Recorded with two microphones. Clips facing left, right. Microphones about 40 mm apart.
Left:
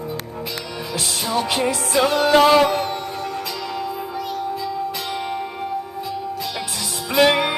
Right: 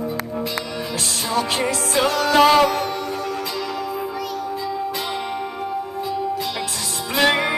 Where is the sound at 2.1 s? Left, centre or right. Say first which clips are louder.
Left 2 dB; left.